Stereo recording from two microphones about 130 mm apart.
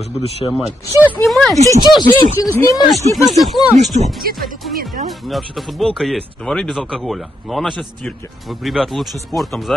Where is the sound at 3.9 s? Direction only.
60° right (ahead or behind).